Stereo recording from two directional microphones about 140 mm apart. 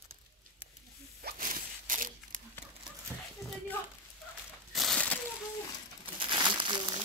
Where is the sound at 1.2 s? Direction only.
75° right (ahead or behind).